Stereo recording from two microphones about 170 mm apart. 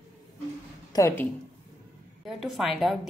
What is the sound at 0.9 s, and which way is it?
Speech, 15° left (ahead or behind).